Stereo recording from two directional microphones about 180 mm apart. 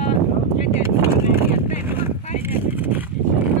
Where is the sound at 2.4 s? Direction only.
10° right (ahead or behind).